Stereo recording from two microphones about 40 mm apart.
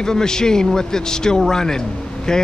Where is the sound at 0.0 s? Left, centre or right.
Centre.